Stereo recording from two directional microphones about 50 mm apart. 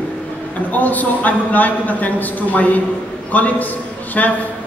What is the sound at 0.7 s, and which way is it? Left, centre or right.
A man's voice, left.